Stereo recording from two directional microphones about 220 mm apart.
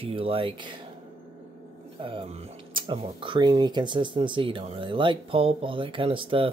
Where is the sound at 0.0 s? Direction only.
25° right (ahead or behind).